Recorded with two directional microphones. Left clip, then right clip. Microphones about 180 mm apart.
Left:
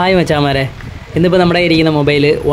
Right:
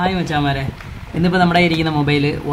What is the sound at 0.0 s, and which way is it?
Speech, 45° left (ahead or behind).